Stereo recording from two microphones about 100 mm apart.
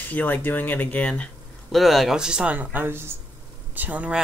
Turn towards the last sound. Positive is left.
turn(degrees=-15)  # may be behind; listen again after turning